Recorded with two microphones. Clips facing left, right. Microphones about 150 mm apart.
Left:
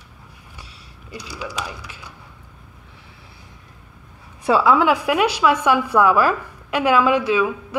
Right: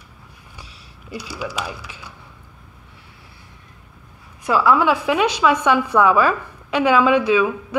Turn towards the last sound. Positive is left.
turn(degrees=0)  # may be behind; listen again after turning